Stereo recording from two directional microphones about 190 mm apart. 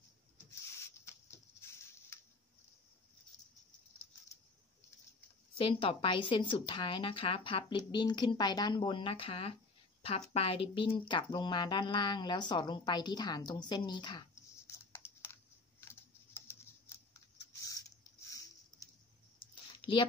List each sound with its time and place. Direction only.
5.6 s speech: 30° left (ahead or behind)
14.7 s computer keyboard: 15° left (ahead or behind)
15.8 s typing: 15° left (ahead or behind)
18.3 s patter: 20° left (ahead or behind)
19.7 s a sound: 25° left (ahead or behind)